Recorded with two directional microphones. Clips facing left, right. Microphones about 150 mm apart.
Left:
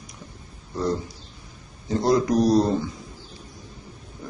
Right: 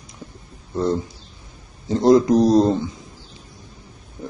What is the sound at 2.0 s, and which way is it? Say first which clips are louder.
Speech: right 7 dB; 20° right (ahead or behind).